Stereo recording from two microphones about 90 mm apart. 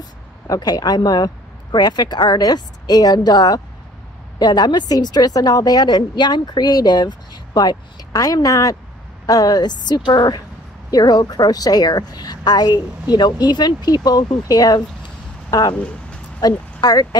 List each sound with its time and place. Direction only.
0.5 s a woman's voice: 45° left (ahead or behind)
15.7 s speech: 15° left (ahead or behind)
16.3 s speech: 45° left (ahead or behind)